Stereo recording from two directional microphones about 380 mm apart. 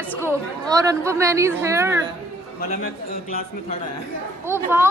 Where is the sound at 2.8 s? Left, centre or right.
Left.